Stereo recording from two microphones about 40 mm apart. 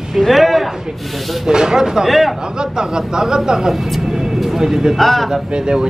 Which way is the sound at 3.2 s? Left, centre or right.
Centre.